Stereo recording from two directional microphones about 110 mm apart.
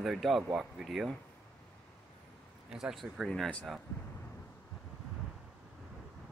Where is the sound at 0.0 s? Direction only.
Centre (ahead or behind).